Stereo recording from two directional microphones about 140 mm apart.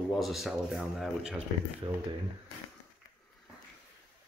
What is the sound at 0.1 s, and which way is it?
Speech, centre (ahead or behind).